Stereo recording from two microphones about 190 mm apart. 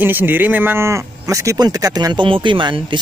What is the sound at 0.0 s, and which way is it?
Speech, 10° right (ahead or behind).